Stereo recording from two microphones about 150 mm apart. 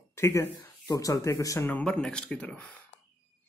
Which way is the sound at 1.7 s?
5° left (ahead or behind).